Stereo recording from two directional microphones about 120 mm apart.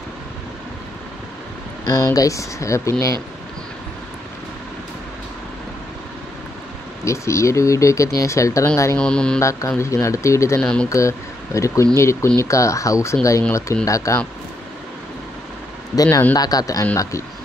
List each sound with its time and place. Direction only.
1.9 s speech: 30° left (ahead or behind)
7.1 s speech: 25° left (ahead or behind)
8.9 s mantra: 5° left (ahead or behind)
9.4 s speech: 25° left (ahead or behind)
10.6 s mantra: 5° left (ahead or behind)
10.9 s speech: 25° left (ahead or behind)
16.0 s speech: 25° left (ahead or behind)